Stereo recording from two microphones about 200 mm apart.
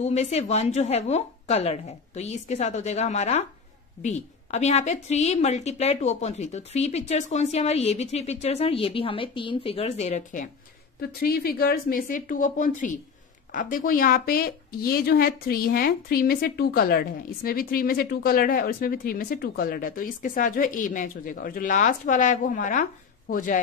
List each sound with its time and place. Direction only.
0.0 s a woman's voice: 35° left (ahead or behind)
11.0 s a woman's voice: 50° left (ahead or behind)